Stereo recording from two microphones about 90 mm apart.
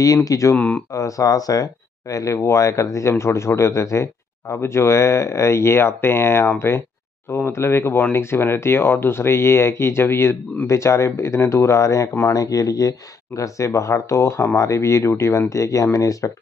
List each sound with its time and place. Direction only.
0.0 s speech: 40° left (ahead or behind)
0.6 s speech: 15° left (ahead or behind)
0.9 s speech: 40° left (ahead or behind)